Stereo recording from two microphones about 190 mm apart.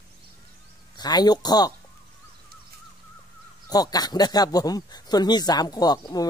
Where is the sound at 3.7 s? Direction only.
20° left (ahead or behind).